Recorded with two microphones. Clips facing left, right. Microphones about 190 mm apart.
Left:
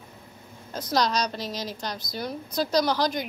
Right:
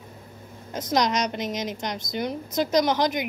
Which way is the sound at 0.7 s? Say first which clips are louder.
Right 2 dB; 20° right (ahead or behind).